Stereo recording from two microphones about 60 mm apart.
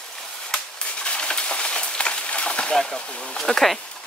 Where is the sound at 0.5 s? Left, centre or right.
Centre.